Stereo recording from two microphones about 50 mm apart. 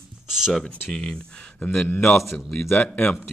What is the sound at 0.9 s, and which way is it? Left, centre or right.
Speech, centre.